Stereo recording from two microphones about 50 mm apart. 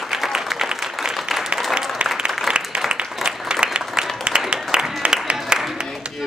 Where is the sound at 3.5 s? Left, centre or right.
Centre.